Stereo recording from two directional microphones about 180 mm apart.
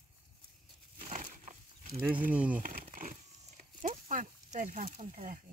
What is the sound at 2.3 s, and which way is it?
Speech, 10° right (ahead or behind).